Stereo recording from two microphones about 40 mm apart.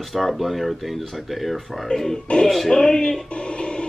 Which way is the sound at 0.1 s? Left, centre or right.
Centre.